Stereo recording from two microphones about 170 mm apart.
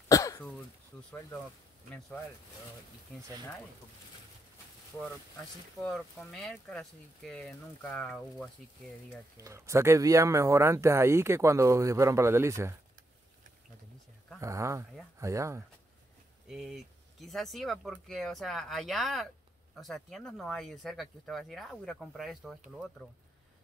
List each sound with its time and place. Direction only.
0.1 s throat clearing: 20° left (ahead or behind)
5.8 s speech: 5° left (ahead or behind)
9.4 s speech: 15° right (ahead or behind)
14.4 s speech: 15° right (ahead or behind)
16.4 s speech: centre (ahead or behind)